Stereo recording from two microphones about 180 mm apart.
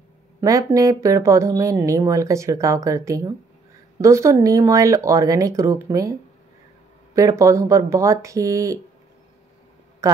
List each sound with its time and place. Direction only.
0.4 s speech: 15° right (ahead or behind)
7.2 s speech: 15° right (ahead or behind)
10.0 s a woman's voice: 15° right (ahead or behind)